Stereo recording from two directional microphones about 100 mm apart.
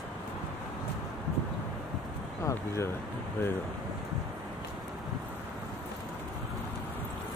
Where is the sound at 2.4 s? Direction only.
30° left (ahead or behind).